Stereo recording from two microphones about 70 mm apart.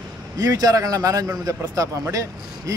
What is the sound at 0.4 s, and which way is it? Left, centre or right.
A man's voice, right.